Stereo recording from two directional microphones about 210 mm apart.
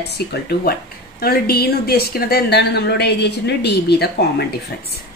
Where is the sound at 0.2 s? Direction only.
50° left (ahead or behind).